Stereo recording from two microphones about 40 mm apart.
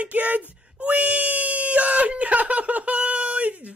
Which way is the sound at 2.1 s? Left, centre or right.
Right.